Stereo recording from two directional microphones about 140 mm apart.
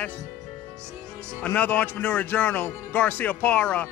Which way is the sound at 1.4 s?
10° left (ahead or behind).